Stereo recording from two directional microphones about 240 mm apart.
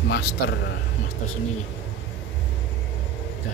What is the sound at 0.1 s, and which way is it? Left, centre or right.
Speech, left.